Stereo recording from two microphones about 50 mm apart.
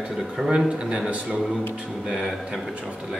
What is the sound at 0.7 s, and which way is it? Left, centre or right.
Speech, centre.